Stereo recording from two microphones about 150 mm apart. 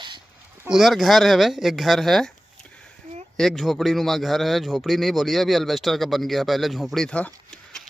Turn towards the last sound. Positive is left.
turn(degrees=5)  # may be behind; listen again after turning